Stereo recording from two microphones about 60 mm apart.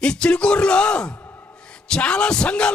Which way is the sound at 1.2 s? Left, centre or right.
Left.